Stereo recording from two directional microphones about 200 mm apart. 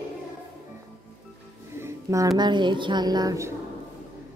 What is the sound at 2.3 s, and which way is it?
A woman's voice, 20° right (ahead or behind).